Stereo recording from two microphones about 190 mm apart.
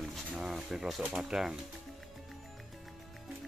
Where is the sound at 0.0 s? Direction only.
Centre (ahead or behind).